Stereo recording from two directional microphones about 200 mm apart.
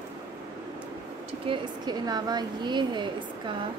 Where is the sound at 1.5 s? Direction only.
20° right (ahead or behind).